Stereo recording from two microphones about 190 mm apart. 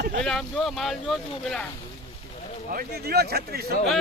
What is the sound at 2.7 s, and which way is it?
Speech, 55° right (ahead or behind).